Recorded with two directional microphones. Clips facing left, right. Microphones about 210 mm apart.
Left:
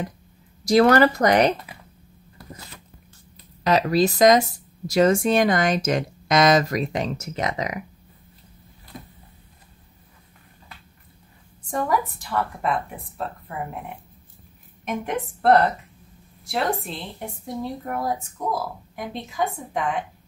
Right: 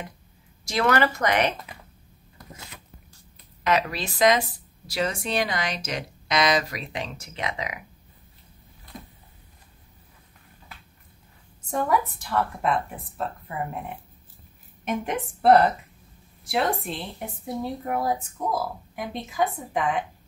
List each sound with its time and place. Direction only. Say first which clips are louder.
0.7 s speech: left 7 dB; 40° left (ahead or behind)
2.3 s a sound: left 3 dB; centre (ahead or behind)
3.6 s speech: left 6 dB; 35° left (ahead or behind)
11.7 s a woman's voice: even; centre (ahead or behind)